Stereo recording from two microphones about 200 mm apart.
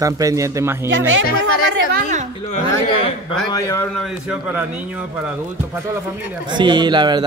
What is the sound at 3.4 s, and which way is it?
Speech, 15° left (ahead or behind).